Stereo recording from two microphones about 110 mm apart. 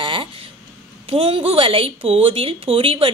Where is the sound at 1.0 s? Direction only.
55° right (ahead or behind).